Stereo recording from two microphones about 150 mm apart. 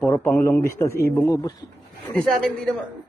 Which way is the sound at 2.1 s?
5° left (ahead or behind).